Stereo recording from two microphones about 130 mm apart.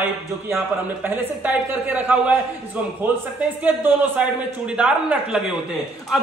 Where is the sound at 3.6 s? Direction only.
10° right (ahead or behind).